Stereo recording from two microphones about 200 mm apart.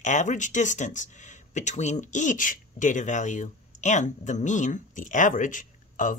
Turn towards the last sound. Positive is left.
turn(degrees=40)  # may be behind; listen again after turning